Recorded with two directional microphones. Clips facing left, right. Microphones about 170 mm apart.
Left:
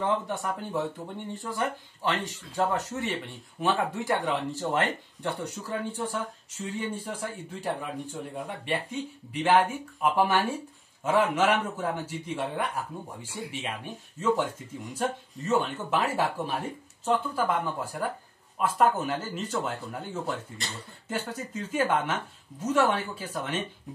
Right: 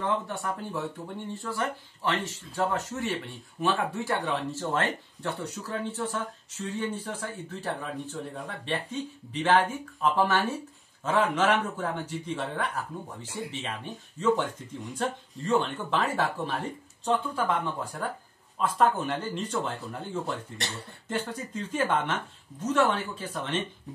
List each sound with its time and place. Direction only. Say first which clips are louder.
0.0 s a man's voice: left 2 dB; 20° left (ahead or behind)